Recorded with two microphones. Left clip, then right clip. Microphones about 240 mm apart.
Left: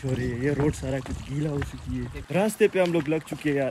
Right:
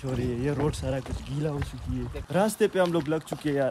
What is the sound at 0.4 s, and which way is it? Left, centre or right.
Speech, centre.